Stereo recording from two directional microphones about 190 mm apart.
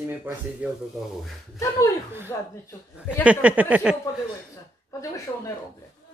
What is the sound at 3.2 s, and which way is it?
Speech, 5° right (ahead or behind).